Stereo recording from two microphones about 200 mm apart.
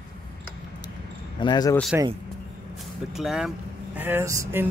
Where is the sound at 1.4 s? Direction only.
20° left (ahead or behind).